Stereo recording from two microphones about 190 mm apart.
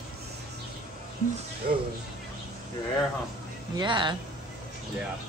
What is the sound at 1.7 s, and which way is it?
Speech, 50° right (ahead or behind).